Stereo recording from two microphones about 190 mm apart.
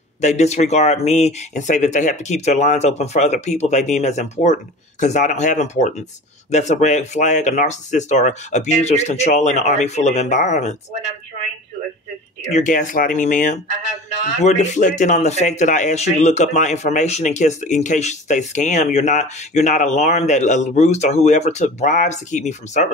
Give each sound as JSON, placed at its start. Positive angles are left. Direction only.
{"t": 0.2, "sound": "speech", "side_deg": 35}
{"t": 12.4, "sound": "speech", "side_deg": 40}